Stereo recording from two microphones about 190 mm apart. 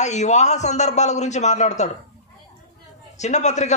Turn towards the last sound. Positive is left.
turn(degrees=35)  # may be behind; listen again after turning